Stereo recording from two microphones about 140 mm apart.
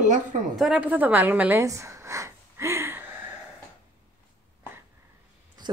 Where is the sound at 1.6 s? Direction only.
20° right (ahead or behind).